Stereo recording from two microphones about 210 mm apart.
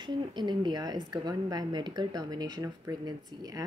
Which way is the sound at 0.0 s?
20° right (ahead or behind).